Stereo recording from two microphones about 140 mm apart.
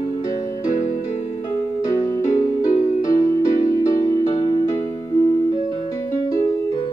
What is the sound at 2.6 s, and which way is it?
Music, 65° left (ahead or behind).